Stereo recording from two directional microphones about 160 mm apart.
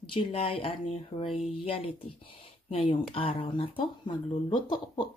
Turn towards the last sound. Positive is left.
turn(degrees=30)  # may be behind; listen again after turning